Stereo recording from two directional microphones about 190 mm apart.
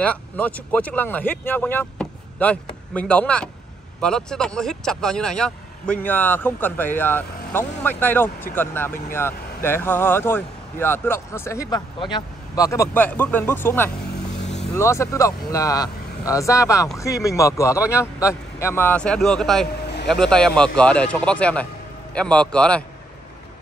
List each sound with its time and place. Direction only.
0.0 s speech: 5° left (ahead or behind)